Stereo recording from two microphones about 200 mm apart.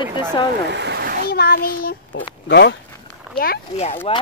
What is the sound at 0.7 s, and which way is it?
Splash, 60° right (ahead or behind).